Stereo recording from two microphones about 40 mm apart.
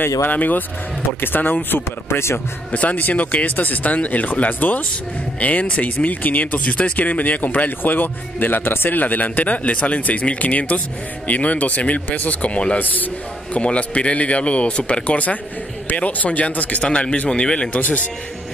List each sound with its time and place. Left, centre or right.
0.3 s a man's voice: left
1.2 s speech: left
2.7 s a man's voice: left
12.7 s a man's voice: left
13.6 s speech: left
16.8 s a man's voice: left
17.7 s speech: left